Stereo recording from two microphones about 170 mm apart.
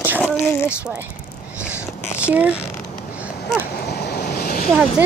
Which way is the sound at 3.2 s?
10° right (ahead or behind).